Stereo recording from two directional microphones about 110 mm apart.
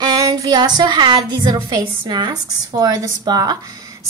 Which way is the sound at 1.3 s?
40° right (ahead or behind).